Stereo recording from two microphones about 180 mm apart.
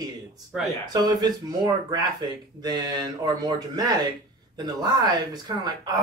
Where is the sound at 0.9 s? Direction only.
25° right (ahead or behind).